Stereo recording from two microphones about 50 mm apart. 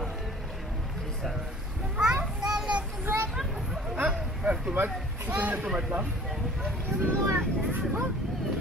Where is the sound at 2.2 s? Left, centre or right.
Centre.